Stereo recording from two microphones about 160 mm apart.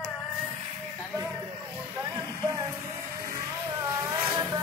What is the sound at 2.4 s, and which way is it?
Vehicle, 20° right (ahead or behind).